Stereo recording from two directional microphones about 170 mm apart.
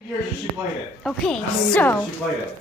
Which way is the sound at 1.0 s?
5° left (ahead or behind).